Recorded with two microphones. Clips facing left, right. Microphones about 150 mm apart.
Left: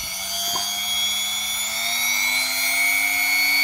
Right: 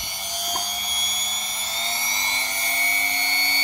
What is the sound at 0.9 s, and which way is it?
Helicopter, 15° right (ahead or behind).